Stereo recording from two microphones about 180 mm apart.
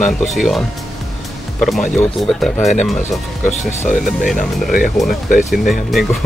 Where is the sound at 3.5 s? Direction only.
40° left (ahead or behind).